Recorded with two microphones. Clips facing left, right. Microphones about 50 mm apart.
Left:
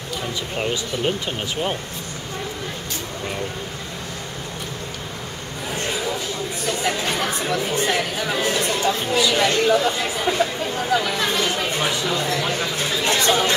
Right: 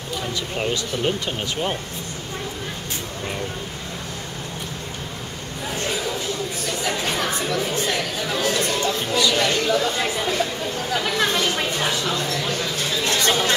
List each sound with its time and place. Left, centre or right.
0.6 s speech: centre
6.6 s chatter: centre
11.6 s a sound: centre